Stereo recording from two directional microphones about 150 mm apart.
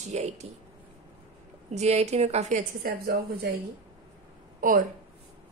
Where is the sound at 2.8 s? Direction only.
85° right.